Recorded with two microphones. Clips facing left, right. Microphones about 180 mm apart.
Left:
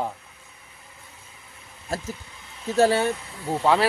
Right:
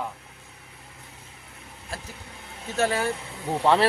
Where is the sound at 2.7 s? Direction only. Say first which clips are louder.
Left 5 dB; 30° left (ahead or behind).